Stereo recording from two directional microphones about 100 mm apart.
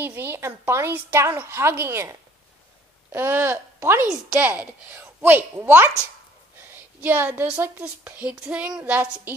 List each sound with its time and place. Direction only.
0.0 s a woman's voice: 20° right (ahead or behind)
6.7 s a sound: 20° right (ahead or behind)
7.8 s a woman's voice: 15° right (ahead or behind)